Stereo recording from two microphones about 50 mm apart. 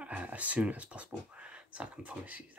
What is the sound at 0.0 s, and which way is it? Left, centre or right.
Speech, right.